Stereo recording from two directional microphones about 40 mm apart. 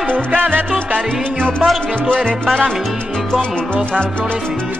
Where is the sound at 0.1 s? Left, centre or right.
Right.